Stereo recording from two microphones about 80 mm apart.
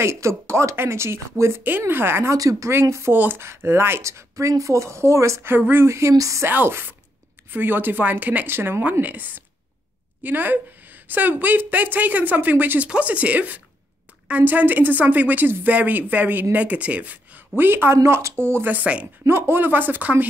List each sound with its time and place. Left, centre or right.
0.0 s a woman's voice: right
2.3 s speech: right
2.7 s a woman's voice: right
6.5 s a woman's voice: right
19.2 s a woman's voice: right